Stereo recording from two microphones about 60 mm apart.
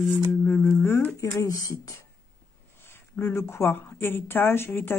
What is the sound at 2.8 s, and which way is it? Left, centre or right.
Speech, left.